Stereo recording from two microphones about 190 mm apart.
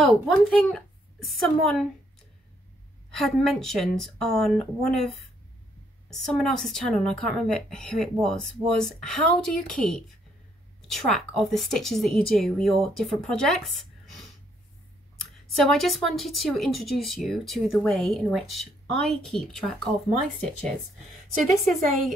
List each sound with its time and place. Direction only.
0.0 s a woman's voice: centre (ahead or behind)
3.2 s speech: centre (ahead or behind)